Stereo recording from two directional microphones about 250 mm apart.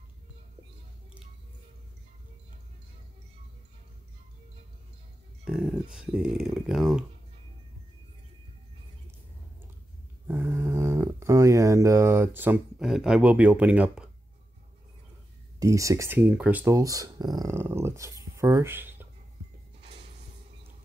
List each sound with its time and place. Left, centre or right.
5.4 s speech: centre
10.2 s a sound: centre
15.6 s speech: centre